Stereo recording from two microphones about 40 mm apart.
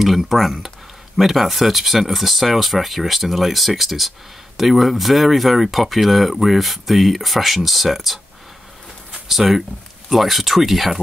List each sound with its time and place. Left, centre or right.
0.0 s speech: centre
9.3 s speech: centre